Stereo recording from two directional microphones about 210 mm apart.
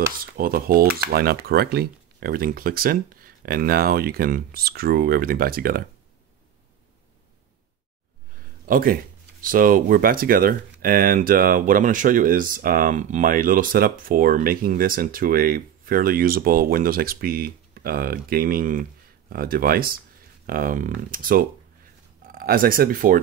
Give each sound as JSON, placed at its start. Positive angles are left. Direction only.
{"t": 0.2, "sound": "speech", "side_deg": -45}
{"t": 8.6, "sound": "speech", "side_deg": -40}